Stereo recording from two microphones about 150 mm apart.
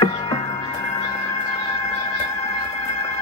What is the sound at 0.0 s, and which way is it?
Music, 30° left (ahead or behind).